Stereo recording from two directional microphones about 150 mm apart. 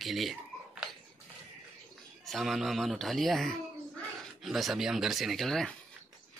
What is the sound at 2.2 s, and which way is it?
Speech, centre (ahead or behind).